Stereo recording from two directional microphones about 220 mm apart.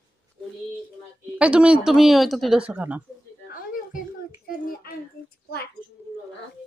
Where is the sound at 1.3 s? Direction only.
5° right (ahead or behind).